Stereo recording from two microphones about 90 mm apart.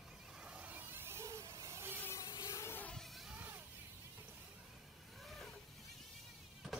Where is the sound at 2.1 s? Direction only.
40° left (ahead or behind).